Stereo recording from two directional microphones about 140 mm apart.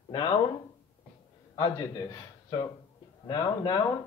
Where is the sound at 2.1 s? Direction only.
25° left (ahead or behind).